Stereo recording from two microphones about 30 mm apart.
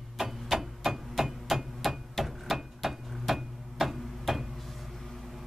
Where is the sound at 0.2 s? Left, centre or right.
Centre.